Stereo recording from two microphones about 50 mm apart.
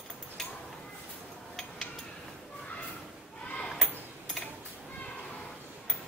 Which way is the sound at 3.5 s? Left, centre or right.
Centre.